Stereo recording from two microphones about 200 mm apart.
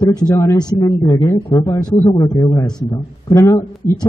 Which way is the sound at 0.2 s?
15° left (ahead or behind).